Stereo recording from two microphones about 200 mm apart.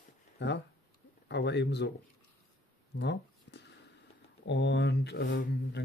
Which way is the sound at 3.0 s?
60° left (ahead or behind).